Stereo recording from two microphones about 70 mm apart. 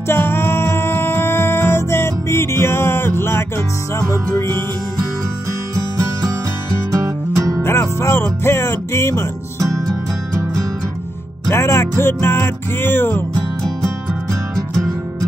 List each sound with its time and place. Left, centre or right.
0.1 s music: left
6.9 s music: right
7.6 s music: left
11.5 s music: left